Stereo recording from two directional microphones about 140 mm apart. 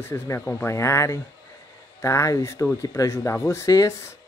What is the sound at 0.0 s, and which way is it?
Speech, 20° left (ahead or behind).